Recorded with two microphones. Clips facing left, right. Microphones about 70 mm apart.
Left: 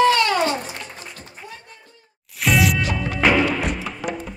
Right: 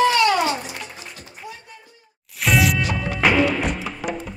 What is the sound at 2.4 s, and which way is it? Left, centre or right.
Music, centre.